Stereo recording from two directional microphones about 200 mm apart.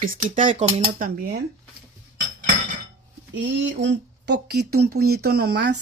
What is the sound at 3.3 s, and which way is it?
Speech, 65° right (ahead or behind).